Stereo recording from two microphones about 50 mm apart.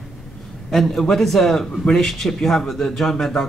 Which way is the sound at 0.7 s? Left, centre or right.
Centre.